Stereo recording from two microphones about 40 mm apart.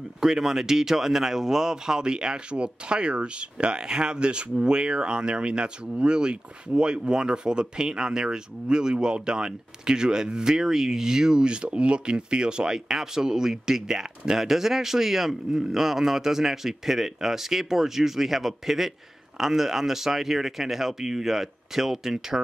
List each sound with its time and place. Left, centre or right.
0.2 s speech: centre